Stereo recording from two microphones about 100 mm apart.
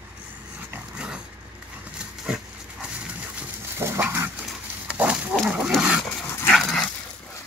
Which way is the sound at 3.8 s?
20° right (ahead or behind).